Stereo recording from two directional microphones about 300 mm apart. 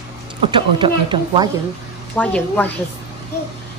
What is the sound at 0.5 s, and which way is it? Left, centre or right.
Speech, centre.